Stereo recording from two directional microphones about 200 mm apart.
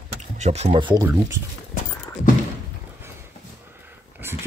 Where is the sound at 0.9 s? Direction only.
10° right (ahead or behind).